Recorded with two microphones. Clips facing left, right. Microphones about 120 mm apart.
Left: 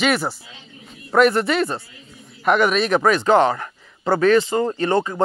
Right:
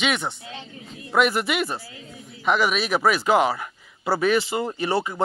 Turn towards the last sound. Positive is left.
turn(degrees=-10)  # may be behind; listen again after turning